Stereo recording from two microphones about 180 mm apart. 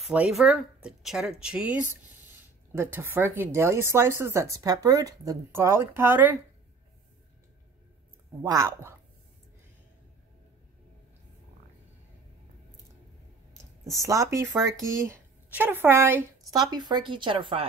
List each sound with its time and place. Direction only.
0.0 s speech: 5° right (ahead or behind)
8.4 s speech: 15° right (ahead or behind)
14.0 s speech: 15° right (ahead or behind)
16.7 s speech: 25° right (ahead or behind)